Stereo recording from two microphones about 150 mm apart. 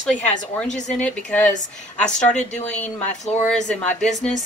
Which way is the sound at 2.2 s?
50° left (ahead or behind).